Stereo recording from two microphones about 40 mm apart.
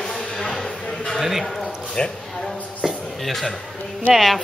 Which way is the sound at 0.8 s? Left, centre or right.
Left.